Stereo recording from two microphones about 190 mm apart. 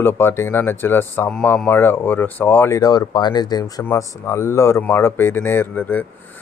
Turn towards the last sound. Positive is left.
turn(degrees=10)  # may be behind; listen again after turning